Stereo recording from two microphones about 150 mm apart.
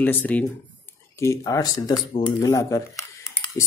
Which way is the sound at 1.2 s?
20° left (ahead or behind).